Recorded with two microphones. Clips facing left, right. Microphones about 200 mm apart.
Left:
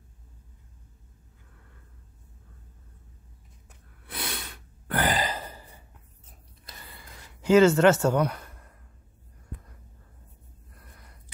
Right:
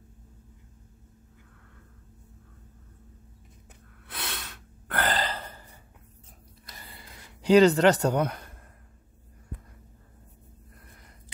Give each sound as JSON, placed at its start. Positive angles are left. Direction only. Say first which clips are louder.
{"t": 4.1, "sound": "a sound", "louder": "left 2 dB", "side_deg": 5}
{"t": 7.5, "sound": "speech", "louder": "even", "side_deg": -35}
{"t": 8.1, "sound": "speech", "louder": "left 2 dB", "side_deg": -25}